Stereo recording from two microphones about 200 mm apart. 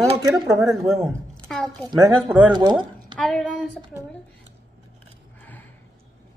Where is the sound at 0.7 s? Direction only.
Centre (ahead or behind).